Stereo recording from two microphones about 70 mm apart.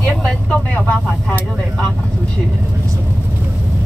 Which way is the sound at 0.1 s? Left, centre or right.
Centre.